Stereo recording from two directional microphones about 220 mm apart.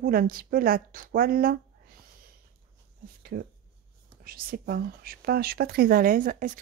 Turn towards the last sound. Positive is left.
turn(degrees=-40)  # may be behind; listen again after turning